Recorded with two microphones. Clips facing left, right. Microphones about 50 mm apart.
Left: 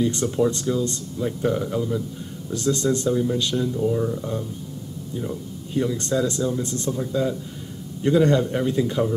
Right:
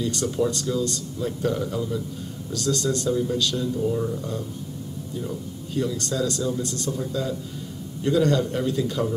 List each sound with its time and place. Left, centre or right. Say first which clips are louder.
0.0 s speech: left 3 dB; left
2.5 s speech: left 3 dB; left
3.7 s speech: left 2 dB; centre
5.8 s speech: left 3 dB; left